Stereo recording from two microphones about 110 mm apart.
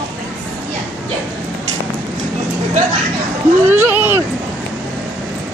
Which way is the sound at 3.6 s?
15° right (ahead or behind).